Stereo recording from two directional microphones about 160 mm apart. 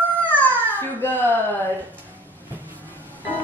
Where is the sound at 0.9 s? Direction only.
10° left (ahead or behind).